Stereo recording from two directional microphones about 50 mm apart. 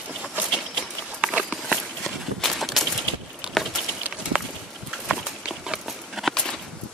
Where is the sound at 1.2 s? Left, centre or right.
Centre.